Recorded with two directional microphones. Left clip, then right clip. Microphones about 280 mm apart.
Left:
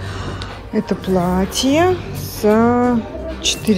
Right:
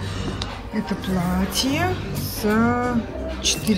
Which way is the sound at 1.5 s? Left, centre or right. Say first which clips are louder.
Left 8 dB; centre.